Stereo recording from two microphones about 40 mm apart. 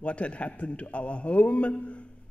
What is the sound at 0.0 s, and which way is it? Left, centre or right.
A man's voice, left.